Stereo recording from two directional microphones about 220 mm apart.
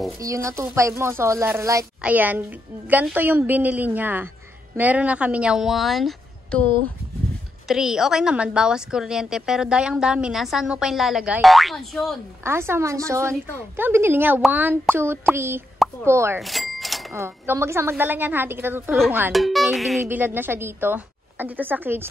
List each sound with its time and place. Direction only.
0.2 s a woman's voice: 15° right (ahead or behind); by 12.2 s centre (ahead or behind)
12.4 s speech: 10° right (ahead or behind)
16.3 s a sound: centre (ahead or behind)
17.1 s speech: 10° right (ahead or behind)